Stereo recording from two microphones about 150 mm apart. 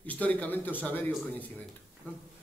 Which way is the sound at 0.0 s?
10° left (ahead or behind).